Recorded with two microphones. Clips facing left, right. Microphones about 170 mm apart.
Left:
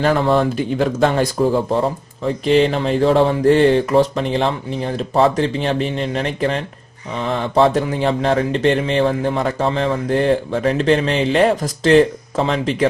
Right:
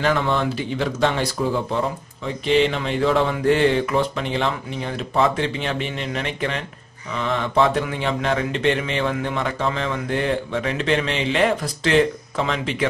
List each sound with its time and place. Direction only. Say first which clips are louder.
0.0 s speech: left 5 dB; 35° left (ahead or behind)